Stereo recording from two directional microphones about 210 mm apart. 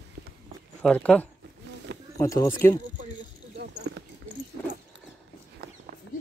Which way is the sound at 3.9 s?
55° right (ahead or behind).